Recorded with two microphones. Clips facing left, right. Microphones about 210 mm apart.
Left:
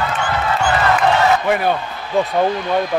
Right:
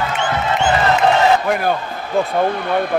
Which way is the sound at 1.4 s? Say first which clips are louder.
Left 1 dB; centre (ahead or behind).